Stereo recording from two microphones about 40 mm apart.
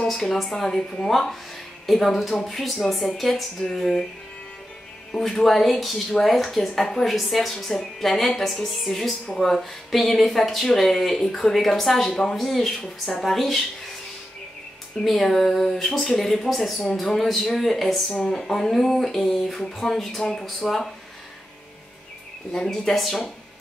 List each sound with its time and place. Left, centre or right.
0.1 s speech: centre
0.8 s speech: left
1.1 s speech: centre
5.2 s speech: centre
15.0 s speech: centre
22.5 s speech: centre